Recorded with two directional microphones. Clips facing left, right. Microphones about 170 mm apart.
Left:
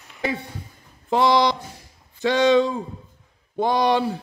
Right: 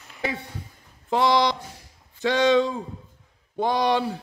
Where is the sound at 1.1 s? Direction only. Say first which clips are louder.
Left 2 dB; 40° left (ahead or behind).